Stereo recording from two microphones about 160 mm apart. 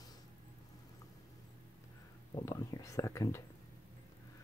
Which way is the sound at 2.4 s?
20° left (ahead or behind).